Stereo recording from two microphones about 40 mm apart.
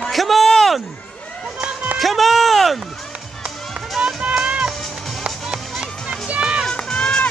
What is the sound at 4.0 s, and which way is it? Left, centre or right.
Music, right.